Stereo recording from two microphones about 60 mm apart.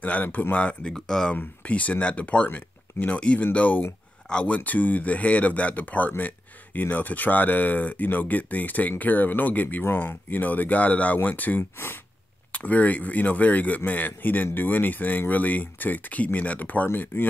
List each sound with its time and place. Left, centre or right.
0.0 s speech: left
0.9 s speech: centre
1.3 s speech: left
4.6 s speech: left